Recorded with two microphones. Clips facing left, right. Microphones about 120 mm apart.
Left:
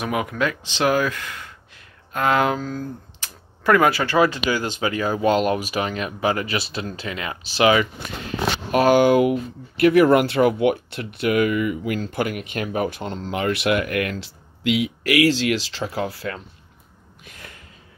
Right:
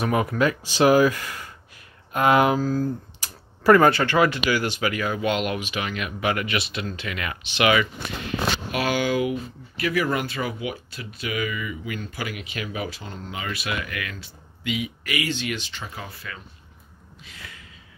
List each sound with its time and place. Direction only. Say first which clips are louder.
0.0 s speech: right 2 dB; centre (ahead or behind); by 7.9 s 30° left (ahead or behind)
8.7 s speech: left 10 dB; 45° left (ahead or behind)
13.3 s speech: left 10 dB; 70° left (ahead or behind); by 16.4 s 90° left
17.2 s a sound: left 1 dB; 50° left (ahead or behind)